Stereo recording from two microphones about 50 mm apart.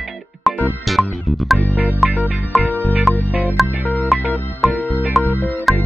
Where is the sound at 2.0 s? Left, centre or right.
Right.